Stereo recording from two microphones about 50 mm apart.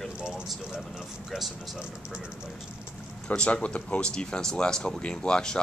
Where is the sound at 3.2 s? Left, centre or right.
Left.